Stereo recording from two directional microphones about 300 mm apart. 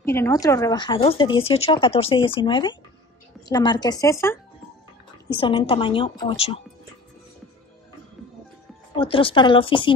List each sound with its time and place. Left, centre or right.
0.0 s speech: centre
8.9 s speech: centre